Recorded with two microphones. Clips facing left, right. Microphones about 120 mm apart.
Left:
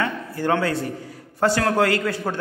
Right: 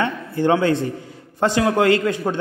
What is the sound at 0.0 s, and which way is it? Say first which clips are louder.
A man's voice: right 4 dB; 20° right (ahead or behind).